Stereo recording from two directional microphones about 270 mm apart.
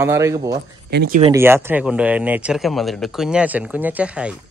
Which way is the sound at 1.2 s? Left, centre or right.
Centre.